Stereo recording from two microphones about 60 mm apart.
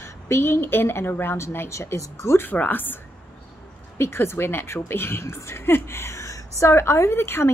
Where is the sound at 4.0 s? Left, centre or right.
Left.